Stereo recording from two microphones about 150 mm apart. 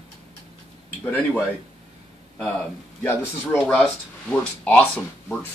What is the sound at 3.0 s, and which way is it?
Speech, 15° left (ahead or behind).